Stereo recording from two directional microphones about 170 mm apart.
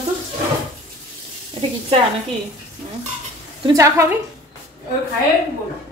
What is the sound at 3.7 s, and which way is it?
Speech, 20° right (ahead or behind).